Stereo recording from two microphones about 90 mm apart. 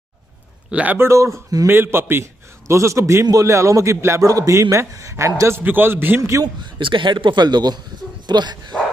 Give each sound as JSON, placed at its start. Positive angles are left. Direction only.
{"t": 0.7, "sound": "a man's voice", "side_deg": -15}
{"t": 0.9, "sound": "a man's voice", "side_deg": -30}
{"t": 1.7, "sound": "a man's voice", "side_deg": -25}
{"t": 6.4, "sound": "a man's voice", "side_deg": -60}